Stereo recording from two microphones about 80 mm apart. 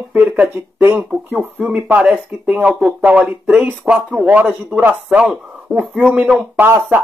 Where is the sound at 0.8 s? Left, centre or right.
Right.